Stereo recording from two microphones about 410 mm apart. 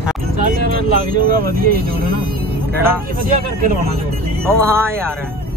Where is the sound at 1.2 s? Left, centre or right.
Right.